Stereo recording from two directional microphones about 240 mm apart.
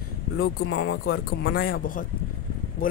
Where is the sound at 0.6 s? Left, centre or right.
Left.